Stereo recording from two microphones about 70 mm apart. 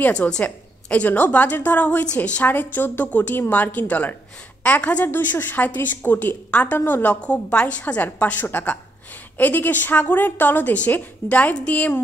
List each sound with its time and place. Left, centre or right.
0.0 s a woman's voice: left